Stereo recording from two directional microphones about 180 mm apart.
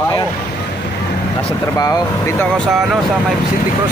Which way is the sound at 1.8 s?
20° left (ahead or behind).